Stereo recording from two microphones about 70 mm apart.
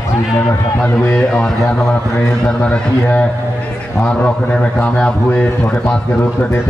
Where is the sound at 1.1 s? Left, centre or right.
Centre.